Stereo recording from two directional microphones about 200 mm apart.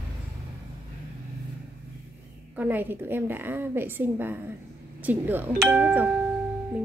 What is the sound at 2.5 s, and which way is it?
A woman's voice, 10° right (ahead or behind).